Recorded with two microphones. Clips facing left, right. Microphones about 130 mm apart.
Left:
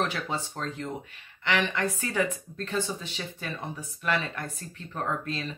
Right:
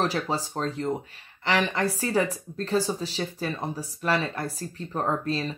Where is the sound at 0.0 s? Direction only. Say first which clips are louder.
Right 4 dB; 35° right (ahead or behind).